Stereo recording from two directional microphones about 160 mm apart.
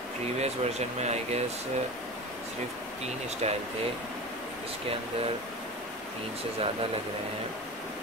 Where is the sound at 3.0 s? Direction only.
40° right (ahead or behind).